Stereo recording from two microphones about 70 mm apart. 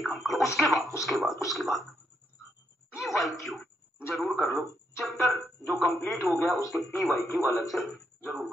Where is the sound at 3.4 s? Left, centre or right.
Centre.